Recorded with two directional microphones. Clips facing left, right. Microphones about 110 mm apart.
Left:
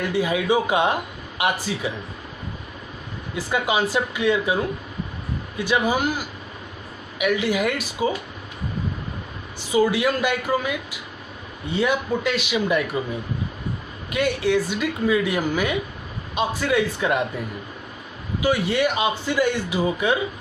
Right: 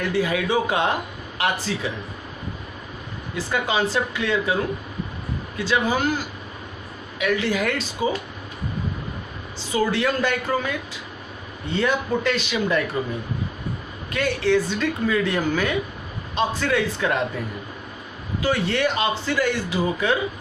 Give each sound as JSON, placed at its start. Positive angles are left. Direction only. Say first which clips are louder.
{"t": 0.1, "sound": "speech", "louder": "left 2 dB", "side_deg": 15}
{"t": 3.3, "sound": "speech", "louder": "left 1 dB", "side_deg": 15}
{"t": 5.6, "sound": "speech", "louder": "left 1 dB", "side_deg": 15}
{"t": 9.6, "sound": "speech", "louder": "left 3 dB", "side_deg": 15}
{"t": 14.1, "sound": "speech", "louder": "even", "side_deg": 15}
{"t": 18.4, "sound": "speech", "louder": "left 1 dB", "side_deg": 15}